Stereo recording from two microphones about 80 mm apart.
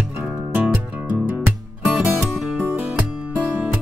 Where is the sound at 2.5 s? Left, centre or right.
Right.